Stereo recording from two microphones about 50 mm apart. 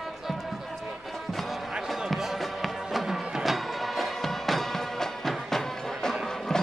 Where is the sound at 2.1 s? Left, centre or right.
Centre.